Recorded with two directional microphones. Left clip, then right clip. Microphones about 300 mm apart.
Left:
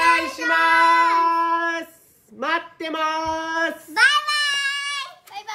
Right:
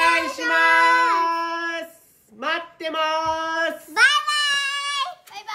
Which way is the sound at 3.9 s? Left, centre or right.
Centre.